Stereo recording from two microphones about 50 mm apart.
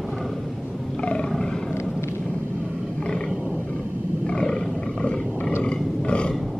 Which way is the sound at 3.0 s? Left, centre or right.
Centre.